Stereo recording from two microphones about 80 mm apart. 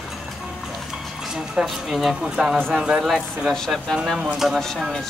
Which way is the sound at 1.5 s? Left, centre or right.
Centre.